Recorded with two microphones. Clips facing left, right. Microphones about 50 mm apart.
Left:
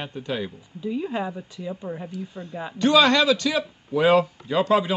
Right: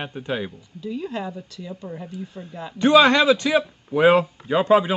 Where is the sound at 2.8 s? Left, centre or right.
Right.